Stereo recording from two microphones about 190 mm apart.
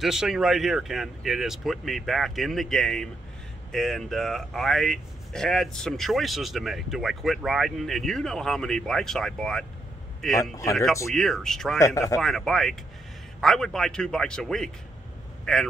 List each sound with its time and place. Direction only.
0.0 s speech: centre (ahead or behind)
10.4 s speech: 15° left (ahead or behind)
11.1 s speech: centre (ahead or behind)
11.8 s speech: 15° left (ahead or behind)
12.2 s speech: centre (ahead or behind)